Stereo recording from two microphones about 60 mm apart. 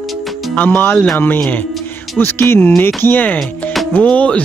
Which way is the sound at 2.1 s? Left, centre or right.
Left.